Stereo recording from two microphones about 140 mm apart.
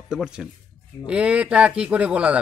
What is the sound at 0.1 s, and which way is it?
A man's voice, 5° right (ahead or behind).